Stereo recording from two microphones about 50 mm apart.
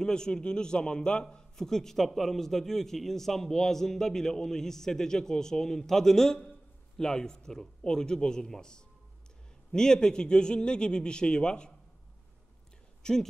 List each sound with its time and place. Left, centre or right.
0.0 s a man's voice: centre
13.0 s speech: centre